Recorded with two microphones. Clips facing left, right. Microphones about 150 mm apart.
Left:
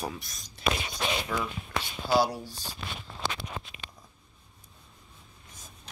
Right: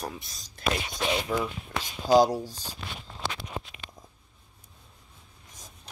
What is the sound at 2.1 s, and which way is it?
Speech, 45° right (ahead or behind).